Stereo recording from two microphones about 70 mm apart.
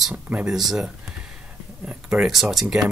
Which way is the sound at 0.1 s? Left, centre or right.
Right.